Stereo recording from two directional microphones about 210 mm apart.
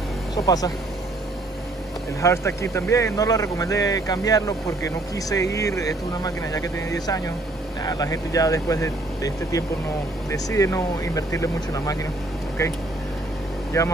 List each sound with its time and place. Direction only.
0.3 s speech: 15° left (ahead or behind)
2.2 s speech: 15° left (ahead or behind)
13.7 s speech: 15° left (ahead or behind)